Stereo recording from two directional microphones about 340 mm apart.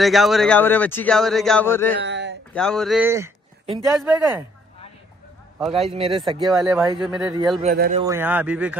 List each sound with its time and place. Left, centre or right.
0.0 s speech: centre
2.0 s a sound: right
2.5 s a man's voice: centre
5.9 s speech: centre
6.4 s speech: centre
7.6 s a man's voice: right
8.0 s speech: centre